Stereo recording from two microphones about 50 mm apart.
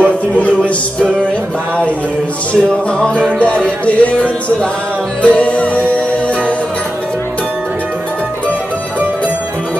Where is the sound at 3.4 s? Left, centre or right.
Left.